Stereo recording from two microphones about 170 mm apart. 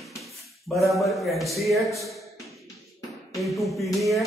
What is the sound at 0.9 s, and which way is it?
Speech, centre (ahead or behind).